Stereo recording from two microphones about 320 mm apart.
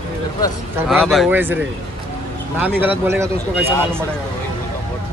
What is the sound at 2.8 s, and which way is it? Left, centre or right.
Speech, centre.